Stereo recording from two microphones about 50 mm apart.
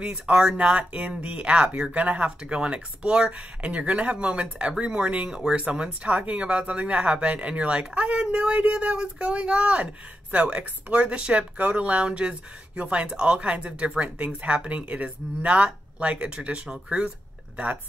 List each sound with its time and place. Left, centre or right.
0.0 s speech: centre